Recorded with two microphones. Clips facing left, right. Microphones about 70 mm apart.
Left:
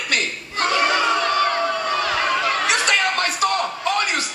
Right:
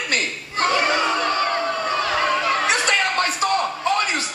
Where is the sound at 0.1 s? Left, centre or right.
Right.